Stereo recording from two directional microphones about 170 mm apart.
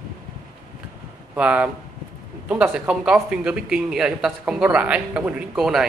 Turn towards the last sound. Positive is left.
turn(degrees=0)  # may be behind; listen again after turning